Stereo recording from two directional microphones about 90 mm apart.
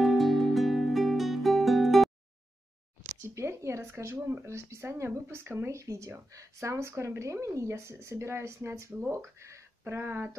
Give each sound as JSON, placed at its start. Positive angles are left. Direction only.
{"t": 0.0, "sound": "music", "side_deg": 0}
{"t": 3.0, "sound": "speech", "side_deg": -30}